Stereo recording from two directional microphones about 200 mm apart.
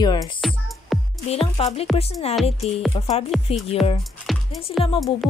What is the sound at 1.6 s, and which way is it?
Speech, 30° left (ahead or behind).